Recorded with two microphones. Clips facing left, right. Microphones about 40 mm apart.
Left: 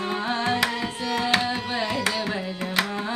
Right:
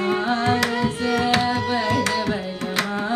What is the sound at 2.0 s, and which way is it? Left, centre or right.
Music, centre.